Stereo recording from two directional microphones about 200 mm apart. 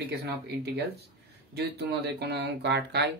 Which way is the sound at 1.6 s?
55° right (ahead or behind).